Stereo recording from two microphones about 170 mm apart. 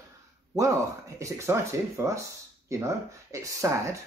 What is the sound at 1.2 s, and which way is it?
Speech, 15° right (ahead or behind).